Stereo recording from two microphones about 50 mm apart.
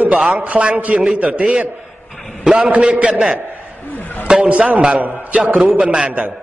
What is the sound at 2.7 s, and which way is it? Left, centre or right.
Speech, right.